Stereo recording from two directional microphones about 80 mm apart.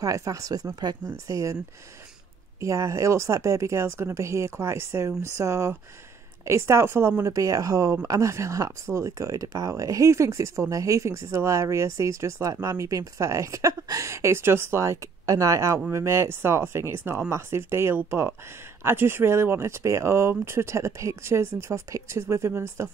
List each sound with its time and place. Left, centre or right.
0.0 s speech: right
1.1 s speech: right
2.6 s speech: right
7.2 s speech: right